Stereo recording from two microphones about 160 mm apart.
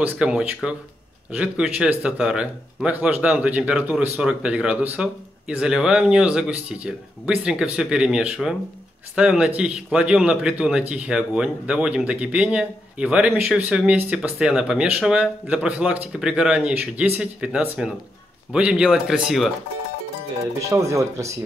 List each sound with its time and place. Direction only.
0.2 s speech: 5° right (ahead or behind)
20.7 s speech: 20° right (ahead or behind)